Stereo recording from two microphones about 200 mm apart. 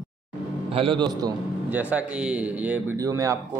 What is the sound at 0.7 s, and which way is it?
Speech, 25° right (ahead or behind).